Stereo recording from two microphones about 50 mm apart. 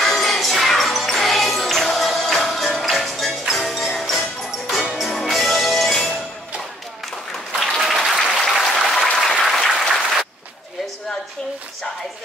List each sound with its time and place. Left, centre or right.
0.0 s music: centre
7.5 s applause: centre